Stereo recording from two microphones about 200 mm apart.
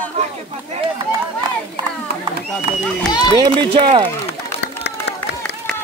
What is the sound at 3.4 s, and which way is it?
Speech, 25° right (ahead or behind).